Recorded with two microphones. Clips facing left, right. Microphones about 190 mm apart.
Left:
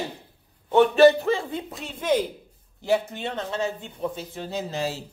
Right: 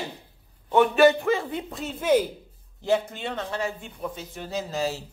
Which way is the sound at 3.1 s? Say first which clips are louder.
Left 1 dB; 25° left (ahead or behind).